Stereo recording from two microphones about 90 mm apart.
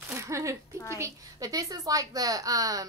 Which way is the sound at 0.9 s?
35° right (ahead or behind).